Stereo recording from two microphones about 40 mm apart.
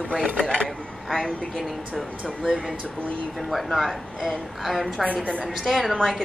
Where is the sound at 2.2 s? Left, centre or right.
Centre.